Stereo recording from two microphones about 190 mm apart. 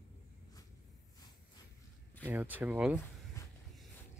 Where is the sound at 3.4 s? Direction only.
15° left (ahead or behind).